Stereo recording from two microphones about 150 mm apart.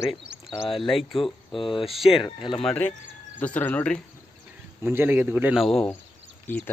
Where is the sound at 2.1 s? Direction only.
35° left (ahead or behind).